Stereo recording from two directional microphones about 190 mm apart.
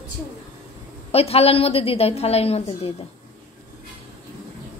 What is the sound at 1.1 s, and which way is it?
A woman's voice, 30° left (ahead or behind).